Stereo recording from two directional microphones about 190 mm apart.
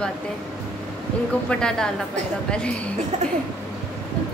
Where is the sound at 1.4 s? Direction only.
5° left (ahead or behind).